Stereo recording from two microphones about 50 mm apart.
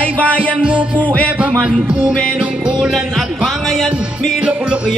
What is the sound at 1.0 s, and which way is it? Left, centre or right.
Music, left.